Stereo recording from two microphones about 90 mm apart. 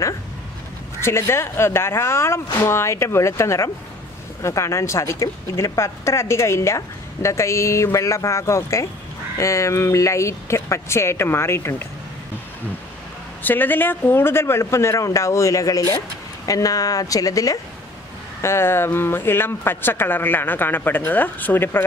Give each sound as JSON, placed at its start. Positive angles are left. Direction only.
{"t": 1.0, "sound": "a woman's voice", "side_deg": 30}
{"t": 13.4, "sound": "a woman's voice", "side_deg": 20}
{"t": 18.4, "sound": "speech", "side_deg": 30}